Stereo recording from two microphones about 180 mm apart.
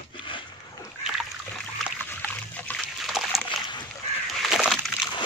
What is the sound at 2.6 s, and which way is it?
Splash, centre (ahead or behind).